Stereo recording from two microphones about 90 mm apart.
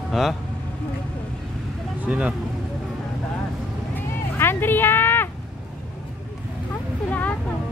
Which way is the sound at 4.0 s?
25° left (ahead or behind).